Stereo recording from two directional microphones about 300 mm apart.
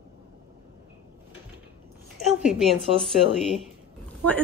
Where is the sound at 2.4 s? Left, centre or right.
Centre.